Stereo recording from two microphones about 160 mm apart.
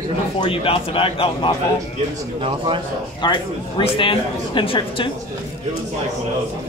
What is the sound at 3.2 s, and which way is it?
A man's voice, 30° left (ahead or behind).